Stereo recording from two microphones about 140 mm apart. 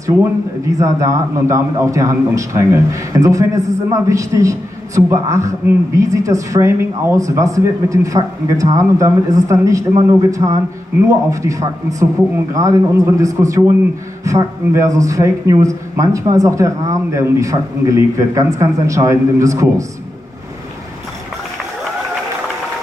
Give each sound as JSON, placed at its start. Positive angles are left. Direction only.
{"t": 0.0, "sound": "a man's voice", "side_deg": -25}